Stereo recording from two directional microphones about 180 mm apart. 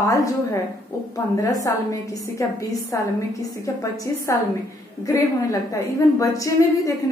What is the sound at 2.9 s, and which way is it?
A woman's voice, 15° left (ahead or behind).